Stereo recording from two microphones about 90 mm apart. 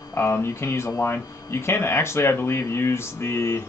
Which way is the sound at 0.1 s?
30° left (ahead or behind).